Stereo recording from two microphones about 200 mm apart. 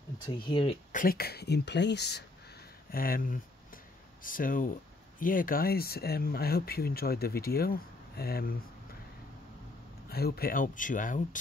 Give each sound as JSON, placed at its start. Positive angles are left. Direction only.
{"t": 0.4, "sound": "speech", "side_deg": 25}
{"t": 0.9, "sound": "speech", "side_deg": 50}
{"t": 2.9, "sound": "a sound", "side_deg": 45}
{"t": 5.2, "sound": "speech", "side_deg": 45}
{"t": 10.0, "sound": "speech", "side_deg": 50}